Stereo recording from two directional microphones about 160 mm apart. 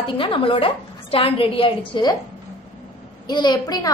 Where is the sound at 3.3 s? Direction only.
25° left (ahead or behind).